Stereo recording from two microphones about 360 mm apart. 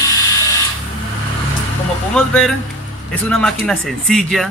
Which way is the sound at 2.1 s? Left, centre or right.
Centre.